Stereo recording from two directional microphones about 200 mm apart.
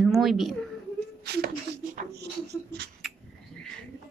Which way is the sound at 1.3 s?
50° right (ahead or behind).